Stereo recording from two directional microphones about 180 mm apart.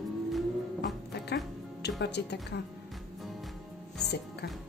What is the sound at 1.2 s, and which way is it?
Music, 70° left (ahead or behind).